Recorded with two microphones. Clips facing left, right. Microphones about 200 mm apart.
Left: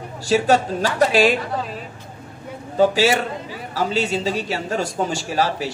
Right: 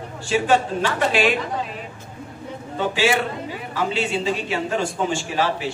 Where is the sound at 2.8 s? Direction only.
40° left (ahead or behind).